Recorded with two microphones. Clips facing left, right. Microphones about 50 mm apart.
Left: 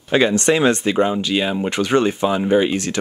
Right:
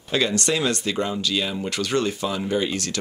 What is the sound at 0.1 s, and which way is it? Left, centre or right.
Speech, left.